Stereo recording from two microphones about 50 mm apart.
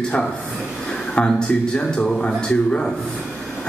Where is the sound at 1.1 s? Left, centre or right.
Centre.